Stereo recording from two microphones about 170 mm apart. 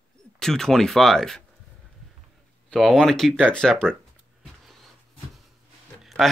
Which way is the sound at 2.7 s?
Centre (ahead or behind).